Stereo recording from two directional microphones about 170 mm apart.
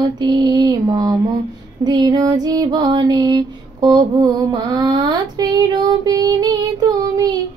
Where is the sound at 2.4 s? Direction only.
20° right (ahead or behind).